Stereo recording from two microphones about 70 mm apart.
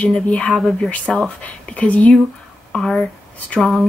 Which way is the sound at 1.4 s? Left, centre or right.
Left.